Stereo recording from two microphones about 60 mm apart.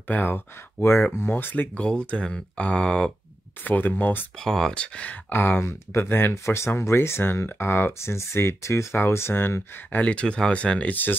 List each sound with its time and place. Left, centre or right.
0.1 s speech: left
1.1 s speech: left
1.4 s speech: left
1.8 s speech: centre
3.6 s speech: left
4.4 s speech: centre
5.3 s speech: left
5.6 s speech: left
6.3 s speech: left
9.9 s speech: left